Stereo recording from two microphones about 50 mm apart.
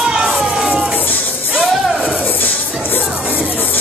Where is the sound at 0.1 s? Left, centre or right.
Centre.